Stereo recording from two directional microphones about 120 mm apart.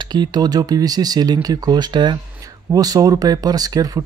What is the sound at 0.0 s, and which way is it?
Speech, 35° right (ahead or behind).